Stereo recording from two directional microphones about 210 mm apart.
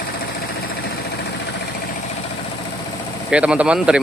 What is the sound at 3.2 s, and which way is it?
Speech, 5° right (ahead or behind).